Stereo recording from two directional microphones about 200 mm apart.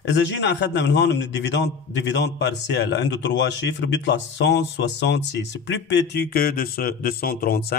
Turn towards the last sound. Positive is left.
turn(degrees=50)  # may be behind; listen again after turning